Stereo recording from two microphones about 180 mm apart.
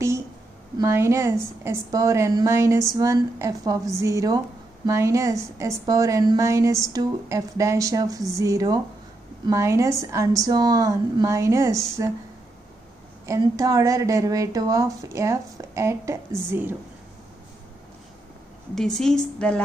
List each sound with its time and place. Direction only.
0.7 s a woman's voice: 15° right (ahead or behind)
13.3 s a woman's voice: 20° right (ahead or behind)
18.8 s a woman's voice: centre (ahead or behind)